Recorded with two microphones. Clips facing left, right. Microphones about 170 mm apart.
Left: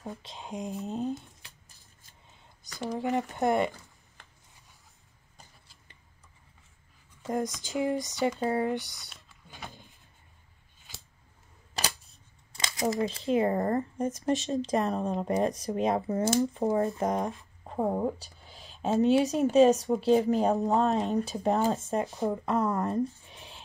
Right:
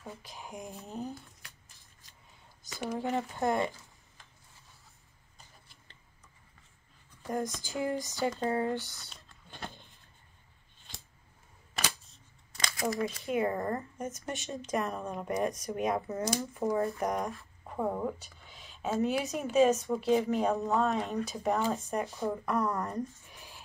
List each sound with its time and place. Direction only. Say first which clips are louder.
0.2 s speech: left 6 dB; 20° left (ahead or behind)
2.9 s speech: left 3 dB; 20° left (ahead or behind)
7.2 s speech: left 3 dB; 20° left (ahead or behind)
9.1 s a sound: even; 5° left (ahead or behind)
12.5 s crumpling: left 1 dB; 25° left (ahead or behind)
12.9 s speech: left 6 dB; 30° left (ahead or behind)